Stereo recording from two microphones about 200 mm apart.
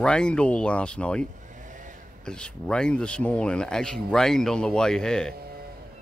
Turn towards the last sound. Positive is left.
turn(degrees=5)  # may be behind; listen again after turning